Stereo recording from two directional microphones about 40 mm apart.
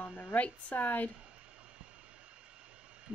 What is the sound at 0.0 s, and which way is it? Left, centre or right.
A woman's voice, left.